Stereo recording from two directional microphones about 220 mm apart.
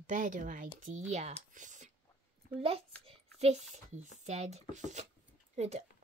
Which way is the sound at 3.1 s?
30° right (ahead or behind).